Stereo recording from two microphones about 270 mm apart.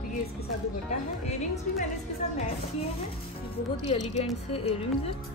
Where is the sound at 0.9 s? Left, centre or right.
Left.